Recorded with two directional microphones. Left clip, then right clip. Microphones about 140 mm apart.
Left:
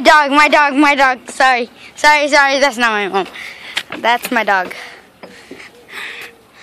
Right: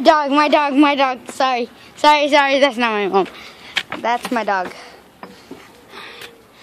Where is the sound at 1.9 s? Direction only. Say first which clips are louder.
Left 2 dB; 15° right (ahead or behind).